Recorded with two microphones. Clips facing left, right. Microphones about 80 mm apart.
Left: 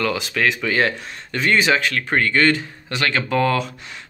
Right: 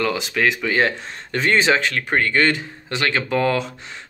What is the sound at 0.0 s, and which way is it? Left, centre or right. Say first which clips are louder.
Speech: right 1 dB; right.